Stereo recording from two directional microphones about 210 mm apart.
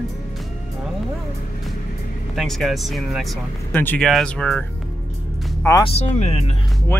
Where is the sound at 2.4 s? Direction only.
Centre (ahead or behind).